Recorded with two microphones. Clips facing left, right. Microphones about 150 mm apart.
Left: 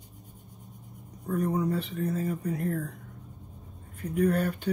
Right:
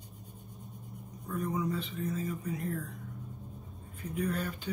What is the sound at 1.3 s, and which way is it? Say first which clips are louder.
Speech: left 5 dB; 60° left (ahead or behind).